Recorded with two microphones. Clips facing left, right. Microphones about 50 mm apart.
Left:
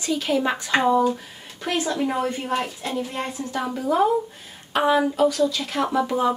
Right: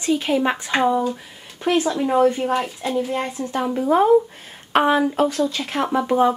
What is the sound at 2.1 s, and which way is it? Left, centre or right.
Speech, right.